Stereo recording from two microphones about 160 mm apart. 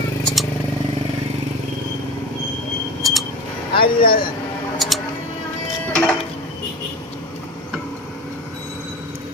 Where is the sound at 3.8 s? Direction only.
65° left (ahead or behind).